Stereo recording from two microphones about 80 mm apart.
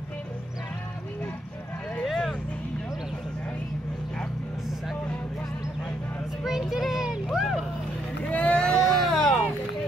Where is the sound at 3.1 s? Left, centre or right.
Centre.